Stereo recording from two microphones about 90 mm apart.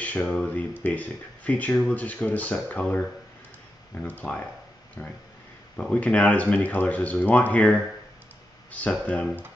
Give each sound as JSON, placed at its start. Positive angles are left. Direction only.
{"t": 0.0, "sound": "speech", "side_deg": 15}
{"t": 5.0, "sound": "speech", "side_deg": 20}
{"t": 5.8, "sound": "speech", "side_deg": 10}